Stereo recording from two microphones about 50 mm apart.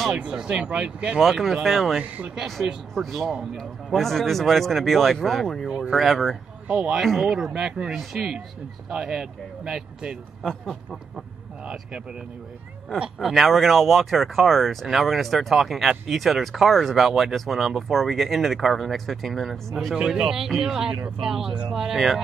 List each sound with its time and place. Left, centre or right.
0.2 s speech: centre
1.2 s speech: centre
5.9 s speech: centre
6.7 s speech: right
7.0 s speech: centre
7.5 s speech: centre
7.9 s speech: centre
8.9 s speech: centre
10.4 s speech: centre
13.2 s speech: centre
20.1 s speech: centre